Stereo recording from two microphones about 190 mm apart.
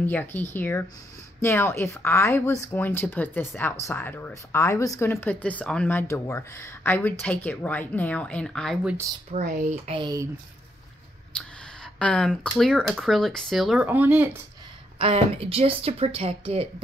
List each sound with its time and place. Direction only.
0.0 s speech: 10° left (ahead or behind)
9.3 s speech: 40° right (ahead or behind)
9.9 s speech: 20° right (ahead or behind)
11.3 s speech: 5° left (ahead or behind)
15.0 s speech: 30° right (ahead or behind)